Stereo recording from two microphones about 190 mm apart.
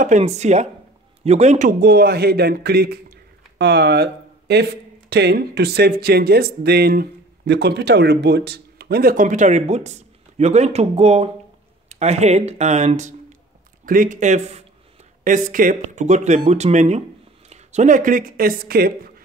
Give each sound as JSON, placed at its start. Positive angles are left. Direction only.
{"t": 0.0, "sound": "a man's voice", "side_deg": -40}